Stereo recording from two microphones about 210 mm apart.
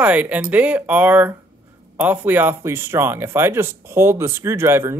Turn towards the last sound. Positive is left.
turn(degrees=-10)  # may be behind; listen again after turning